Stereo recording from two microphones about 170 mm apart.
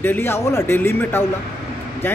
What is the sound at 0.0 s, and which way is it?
Speech, 15° left (ahead or behind).